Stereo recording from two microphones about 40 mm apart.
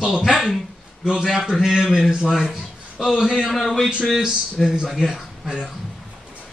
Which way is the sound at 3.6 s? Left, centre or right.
Centre.